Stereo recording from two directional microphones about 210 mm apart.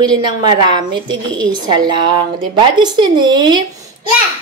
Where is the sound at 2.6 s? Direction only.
20° right (ahead or behind).